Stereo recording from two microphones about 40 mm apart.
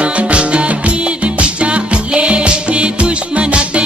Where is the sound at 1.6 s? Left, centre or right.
Right.